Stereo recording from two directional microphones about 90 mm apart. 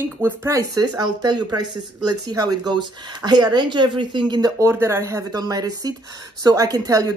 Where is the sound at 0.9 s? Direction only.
50° right (ahead or behind).